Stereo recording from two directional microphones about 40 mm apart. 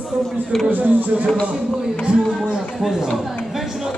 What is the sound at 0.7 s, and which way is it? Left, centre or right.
Speech, right.